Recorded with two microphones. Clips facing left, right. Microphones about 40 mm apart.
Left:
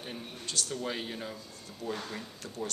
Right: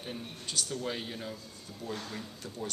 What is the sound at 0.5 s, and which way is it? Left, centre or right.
Speech, centre.